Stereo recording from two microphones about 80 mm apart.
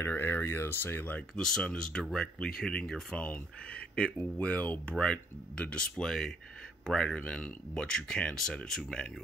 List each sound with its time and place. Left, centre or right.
0.0 s speech: left
1.3 s speech: centre